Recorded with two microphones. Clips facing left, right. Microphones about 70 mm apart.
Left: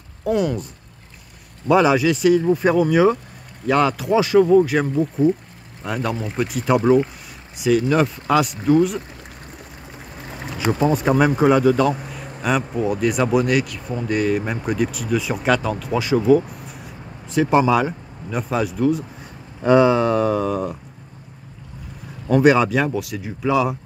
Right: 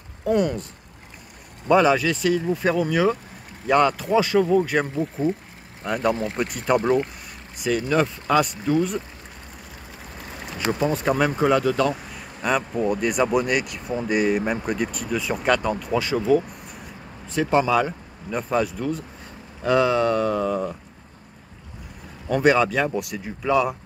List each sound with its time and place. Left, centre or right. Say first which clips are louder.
0.2 s speech: left 1 dB; centre
1.7 s speech: left 2 dB; centre
3.6 s speech: left 1 dB; centre
4.0 s speech: left 4 dB; centre
10.8 s speech: left 4 dB; centre
22.3 s speech: left 4 dB; centre